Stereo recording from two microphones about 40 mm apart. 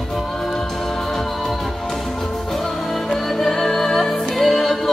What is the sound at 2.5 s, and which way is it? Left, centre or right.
Music, centre.